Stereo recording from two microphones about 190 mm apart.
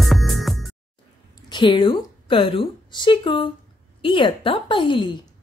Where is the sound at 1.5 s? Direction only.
25° left (ahead or behind).